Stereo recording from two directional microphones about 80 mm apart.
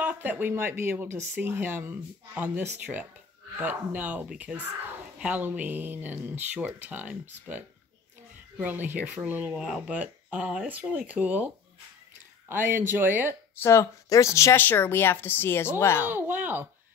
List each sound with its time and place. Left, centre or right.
0.0 s speech: right
8.6 s speech: right
9.5 s speech: centre; by 13.4 s right
13.6 s speech: left
14.6 s speech: left
16.1 s a sound: right